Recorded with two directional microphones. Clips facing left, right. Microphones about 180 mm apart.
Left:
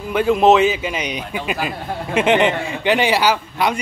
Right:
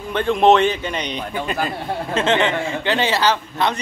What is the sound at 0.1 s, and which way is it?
A man's voice, 5° left (ahead or behind).